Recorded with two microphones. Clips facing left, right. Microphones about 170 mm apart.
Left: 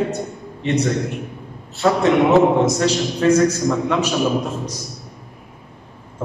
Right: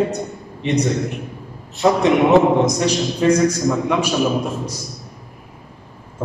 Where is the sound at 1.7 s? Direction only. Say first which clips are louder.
Right 1 dB; 15° right (ahead or behind).